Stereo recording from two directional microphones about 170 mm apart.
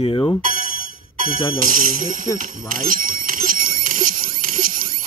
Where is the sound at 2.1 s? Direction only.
55° right (ahead or behind).